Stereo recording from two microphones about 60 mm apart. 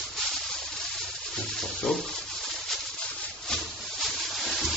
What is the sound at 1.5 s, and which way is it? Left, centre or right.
Rub, centre.